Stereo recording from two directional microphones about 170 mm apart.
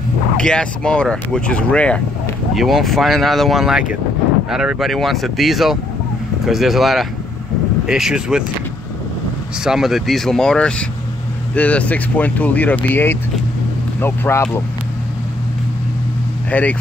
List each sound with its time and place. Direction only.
0.4 s speech: 5° left (ahead or behind)
9.7 s speech: centre (ahead or behind); by 14.6 s 15° left (ahead or behind)
16.4 s speech: 10° left (ahead or behind)